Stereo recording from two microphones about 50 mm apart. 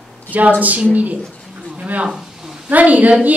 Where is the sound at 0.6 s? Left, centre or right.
Right.